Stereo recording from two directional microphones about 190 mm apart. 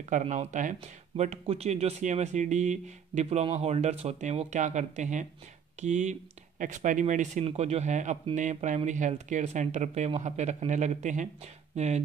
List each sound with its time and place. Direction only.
0.1 s speech: 40° right (ahead or behind)